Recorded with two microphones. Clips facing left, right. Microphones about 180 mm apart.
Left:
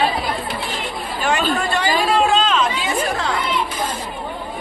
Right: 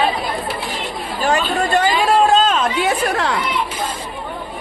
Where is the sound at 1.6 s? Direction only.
40° right (ahead or behind); by 3.3 s 70° right (ahead or behind).